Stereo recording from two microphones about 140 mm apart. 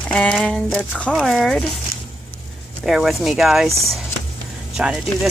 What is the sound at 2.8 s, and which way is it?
Speech, centre (ahead or behind).